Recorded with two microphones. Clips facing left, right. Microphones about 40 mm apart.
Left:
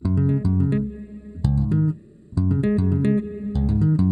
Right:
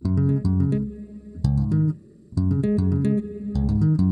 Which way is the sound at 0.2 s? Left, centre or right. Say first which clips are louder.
Left 1 dB; left.